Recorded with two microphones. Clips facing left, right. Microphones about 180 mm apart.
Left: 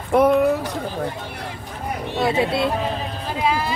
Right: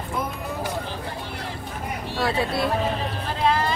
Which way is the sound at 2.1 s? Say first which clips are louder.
Left 4 dB; 20° left (ahead or behind).